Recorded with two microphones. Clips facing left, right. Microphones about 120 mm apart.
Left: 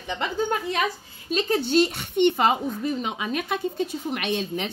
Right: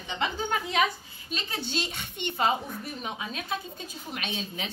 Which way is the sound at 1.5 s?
50° left (ahead or behind).